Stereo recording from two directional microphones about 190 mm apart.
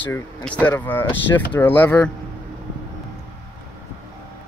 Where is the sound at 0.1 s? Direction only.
10° left (ahead or behind).